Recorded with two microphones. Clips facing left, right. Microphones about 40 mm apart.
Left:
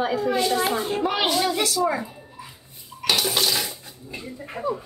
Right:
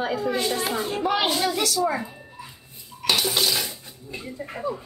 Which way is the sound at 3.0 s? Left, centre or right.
Centre.